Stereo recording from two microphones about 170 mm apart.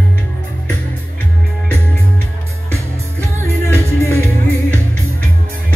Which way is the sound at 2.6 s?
15° right (ahead or behind).